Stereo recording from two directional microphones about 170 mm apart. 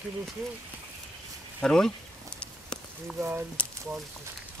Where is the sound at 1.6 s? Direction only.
5° left (ahead or behind).